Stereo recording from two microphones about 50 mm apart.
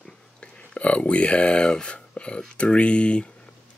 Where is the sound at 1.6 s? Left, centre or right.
Centre.